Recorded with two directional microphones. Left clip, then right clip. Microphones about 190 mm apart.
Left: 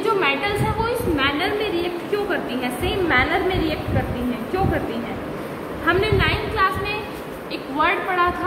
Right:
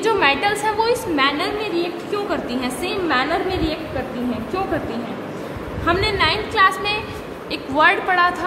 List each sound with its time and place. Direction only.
0.0 s a sound: 55° right (ahead or behind)
0.8 s a woman's voice: 55° right (ahead or behind)
2.6 s a woman's voice: 50° right (ahead or behind)
5.9 s a woman's voice: 55° right (ahead or behind)